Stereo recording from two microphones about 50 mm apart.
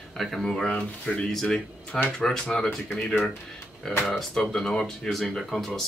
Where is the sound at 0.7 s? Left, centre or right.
Left; by 5.7 s centre.